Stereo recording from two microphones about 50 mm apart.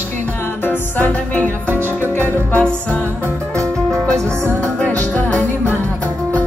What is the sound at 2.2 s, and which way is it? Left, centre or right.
Music, left.